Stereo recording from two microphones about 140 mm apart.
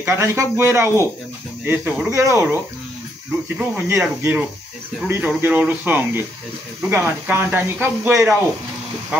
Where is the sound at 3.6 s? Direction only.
15° right (ahead or behind).